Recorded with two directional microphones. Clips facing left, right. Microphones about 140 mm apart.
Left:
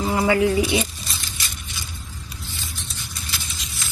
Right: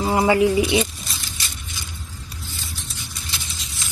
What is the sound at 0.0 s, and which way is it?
Speech, 25° right (ahead or behind).